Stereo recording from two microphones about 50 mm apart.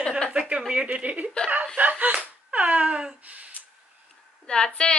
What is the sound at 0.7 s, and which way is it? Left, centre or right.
Speech, right.